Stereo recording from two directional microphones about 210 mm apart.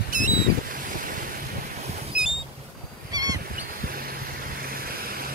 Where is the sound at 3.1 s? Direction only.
20° right (ahead or behind).